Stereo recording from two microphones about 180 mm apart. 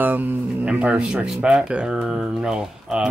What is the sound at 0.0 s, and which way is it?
Speech, 10° right (ahead or behind).